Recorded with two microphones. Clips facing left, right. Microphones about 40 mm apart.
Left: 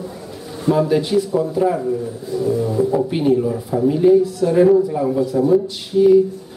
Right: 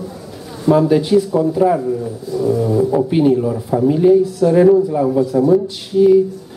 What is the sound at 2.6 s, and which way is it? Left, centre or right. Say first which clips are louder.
Speech: right 3 dB; centre.